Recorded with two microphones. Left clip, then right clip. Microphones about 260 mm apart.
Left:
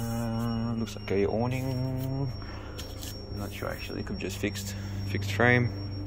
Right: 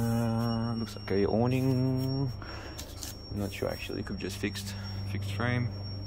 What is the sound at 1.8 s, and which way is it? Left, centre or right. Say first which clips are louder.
Music: right 2 dB; right.